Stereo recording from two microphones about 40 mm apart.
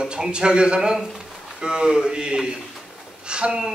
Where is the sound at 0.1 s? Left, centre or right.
Right.